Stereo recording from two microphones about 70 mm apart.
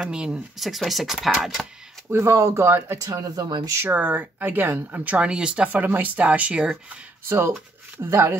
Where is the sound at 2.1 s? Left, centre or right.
Right.